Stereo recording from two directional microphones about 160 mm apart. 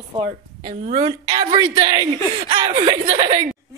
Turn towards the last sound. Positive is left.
turn(degrees=-25)  # may be behind; listen again after turning